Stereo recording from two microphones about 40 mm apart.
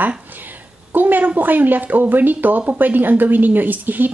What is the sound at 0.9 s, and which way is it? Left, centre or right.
Speech, right.